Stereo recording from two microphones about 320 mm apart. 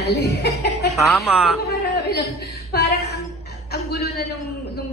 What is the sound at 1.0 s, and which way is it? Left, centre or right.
Speech, centre.